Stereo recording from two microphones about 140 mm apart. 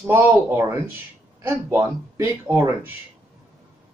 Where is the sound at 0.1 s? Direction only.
15° right (ahead or behind).